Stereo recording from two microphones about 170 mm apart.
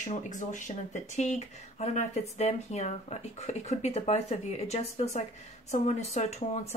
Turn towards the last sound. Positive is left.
turn(degrees=40)  # may be behind; listen again after turning